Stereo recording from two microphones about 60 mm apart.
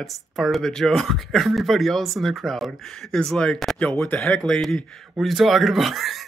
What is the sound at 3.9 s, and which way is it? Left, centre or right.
Speech, left.